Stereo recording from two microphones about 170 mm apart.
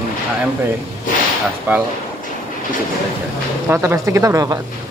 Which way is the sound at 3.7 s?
15° right (ahead or behind).